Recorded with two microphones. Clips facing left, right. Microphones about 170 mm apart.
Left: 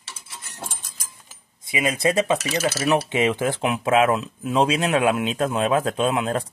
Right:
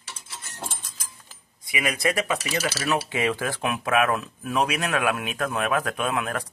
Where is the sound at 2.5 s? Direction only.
25° left (ahead or behind).